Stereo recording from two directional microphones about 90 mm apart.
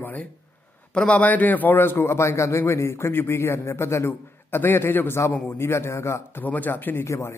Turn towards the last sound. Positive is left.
turn(degrees=35)  # may be behind; listen again after turning